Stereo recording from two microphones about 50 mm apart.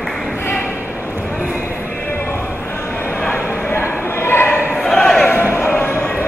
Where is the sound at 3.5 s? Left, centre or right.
Left.